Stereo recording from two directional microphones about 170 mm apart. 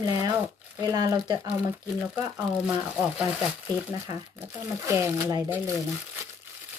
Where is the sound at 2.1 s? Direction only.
5° right (ahead or behind).